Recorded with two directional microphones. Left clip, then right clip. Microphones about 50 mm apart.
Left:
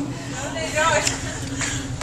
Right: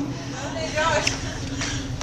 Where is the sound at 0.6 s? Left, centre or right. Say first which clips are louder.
Left 3 dB; centre.